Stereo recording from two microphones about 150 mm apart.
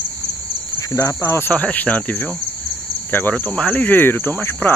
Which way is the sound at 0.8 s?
25° left (ahead or behind).